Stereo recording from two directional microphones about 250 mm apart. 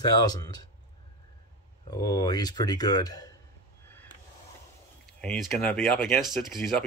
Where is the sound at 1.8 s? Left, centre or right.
Centre.